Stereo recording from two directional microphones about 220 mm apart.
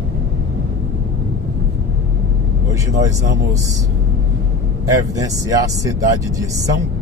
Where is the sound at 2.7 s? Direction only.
15° right (ahead or behind).